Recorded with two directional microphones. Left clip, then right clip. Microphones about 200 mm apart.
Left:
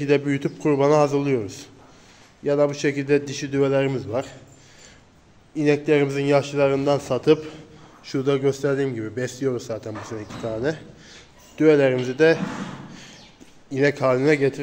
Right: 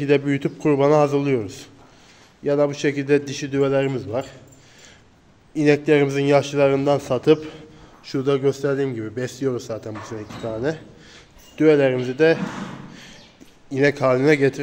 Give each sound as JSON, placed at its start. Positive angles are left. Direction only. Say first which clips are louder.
{"t": 0.0, "sound": "a man's voice", "louder": "right 2 dB", "side_deg": -15}
{"t": 5.5, "sound": "a man's voice", "louder": "right 2 dB", "side_deg": -20}
{"t": 12.9, "sound": "a sound", "louder": "right 1 dB", "side_deg": -15}
{"t": 13.7, "sound": "a man's voice", "louder": "right 2 dB", "side_deg": -15}